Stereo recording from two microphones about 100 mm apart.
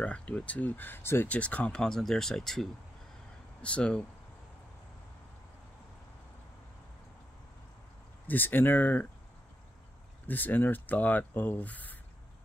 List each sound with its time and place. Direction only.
0.0 s speech: 10° left (ahead or behind)
8.3 s speech: 20° left (ahead or behind)
10.2 s speech: 20° left (ahead or behind)